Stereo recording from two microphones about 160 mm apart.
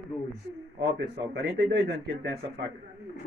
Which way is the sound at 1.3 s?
90° right.